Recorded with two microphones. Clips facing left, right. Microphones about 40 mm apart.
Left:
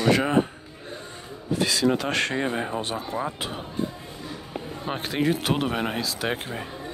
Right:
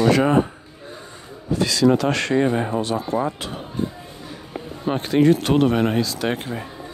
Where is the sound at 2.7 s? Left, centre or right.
Centre.